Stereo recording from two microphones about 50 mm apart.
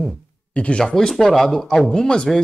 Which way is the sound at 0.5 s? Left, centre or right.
Left.